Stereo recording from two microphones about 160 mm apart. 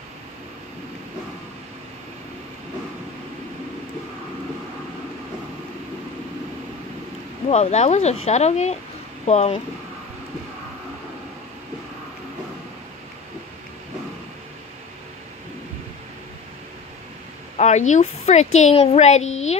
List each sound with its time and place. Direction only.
7.4 s speech: 40° left (ahead or behind)
17.6 s speech: 45° left (ahead or behind)